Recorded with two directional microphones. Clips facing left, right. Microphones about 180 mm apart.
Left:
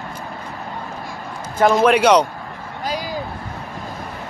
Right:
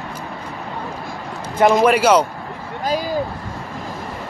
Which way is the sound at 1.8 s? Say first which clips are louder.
Even; 5° right (ahead or behind).